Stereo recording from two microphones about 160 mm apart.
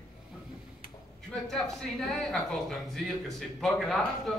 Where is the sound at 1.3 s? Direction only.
5° left (ahead or behind).